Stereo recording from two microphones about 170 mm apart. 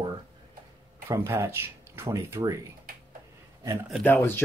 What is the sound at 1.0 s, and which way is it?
Speech, 15° right (ahead or behind).